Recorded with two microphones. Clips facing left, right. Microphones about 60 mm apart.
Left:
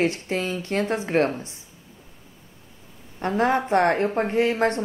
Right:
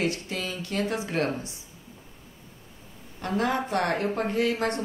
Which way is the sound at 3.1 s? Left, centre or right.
Left.